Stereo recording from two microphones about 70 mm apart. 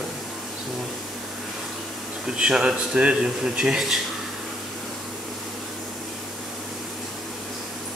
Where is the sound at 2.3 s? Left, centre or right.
Centre.